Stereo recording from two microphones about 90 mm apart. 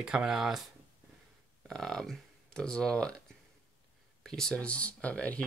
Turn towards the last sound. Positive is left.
turn(degrees=15)  # may be behind; listen again after turning